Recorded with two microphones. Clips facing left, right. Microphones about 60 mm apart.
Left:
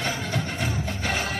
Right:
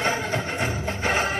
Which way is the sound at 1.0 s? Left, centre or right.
Right.